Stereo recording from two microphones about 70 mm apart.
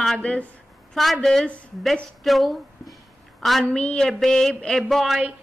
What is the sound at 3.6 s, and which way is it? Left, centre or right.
A woman's voice, centre.